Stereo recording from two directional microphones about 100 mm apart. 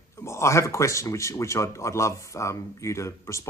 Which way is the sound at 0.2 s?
30° left (ahead or behind).